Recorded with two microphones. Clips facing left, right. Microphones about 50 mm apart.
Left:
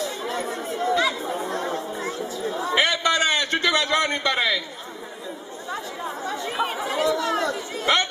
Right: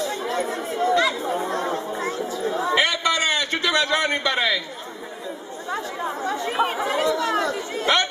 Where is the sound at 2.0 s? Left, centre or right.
Right.